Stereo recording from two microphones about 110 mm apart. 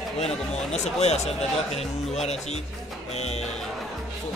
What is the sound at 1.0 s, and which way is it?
Speech, 80° left.